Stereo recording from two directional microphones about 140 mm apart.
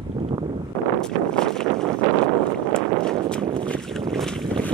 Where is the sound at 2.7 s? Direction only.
5° left (ahead or behind).